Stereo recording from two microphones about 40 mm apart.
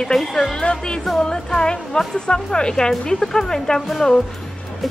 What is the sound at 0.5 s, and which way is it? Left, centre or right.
A woman's voice, left.